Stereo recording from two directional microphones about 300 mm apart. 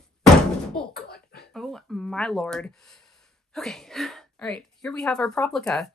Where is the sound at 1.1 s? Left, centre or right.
Left.